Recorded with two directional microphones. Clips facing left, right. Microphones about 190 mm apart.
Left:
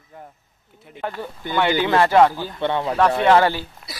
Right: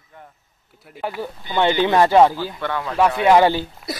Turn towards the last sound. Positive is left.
turn(degrees=0)  # may be behind; listen again after turning